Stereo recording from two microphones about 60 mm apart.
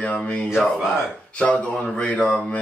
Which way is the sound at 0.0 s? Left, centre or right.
Left.